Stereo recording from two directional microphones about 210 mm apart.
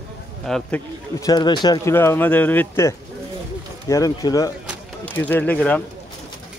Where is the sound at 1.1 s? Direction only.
20° left (ahead or behind).